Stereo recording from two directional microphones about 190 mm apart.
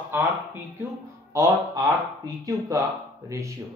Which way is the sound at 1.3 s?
20° right (ahead or behind).